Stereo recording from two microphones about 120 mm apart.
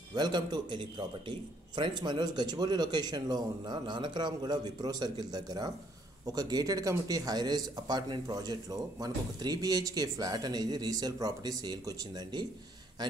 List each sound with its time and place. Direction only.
0.1 s a man's voice: 35° right (ahead or behind)